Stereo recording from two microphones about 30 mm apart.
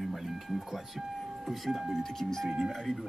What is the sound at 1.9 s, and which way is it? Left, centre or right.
Speech, centre.